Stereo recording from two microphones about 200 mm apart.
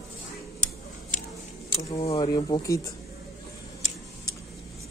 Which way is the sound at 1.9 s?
30° left (ahead or behind).